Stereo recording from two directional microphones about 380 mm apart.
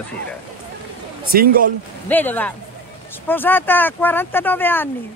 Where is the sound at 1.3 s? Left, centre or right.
Right.